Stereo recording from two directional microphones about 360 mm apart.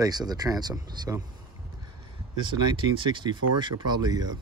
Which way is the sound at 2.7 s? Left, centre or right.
Centre.